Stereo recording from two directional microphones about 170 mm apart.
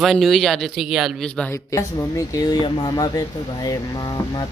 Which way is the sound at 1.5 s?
15° left (ahead or behind).